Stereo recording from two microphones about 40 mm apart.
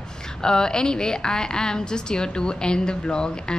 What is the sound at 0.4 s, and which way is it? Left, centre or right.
A woman's voice, centre.